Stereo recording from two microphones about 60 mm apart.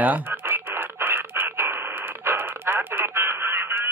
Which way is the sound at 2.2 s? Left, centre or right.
Right.